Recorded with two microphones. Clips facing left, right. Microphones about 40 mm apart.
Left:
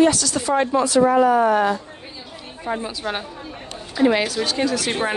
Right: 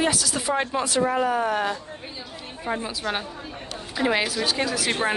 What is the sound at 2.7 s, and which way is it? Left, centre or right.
Speech, centre.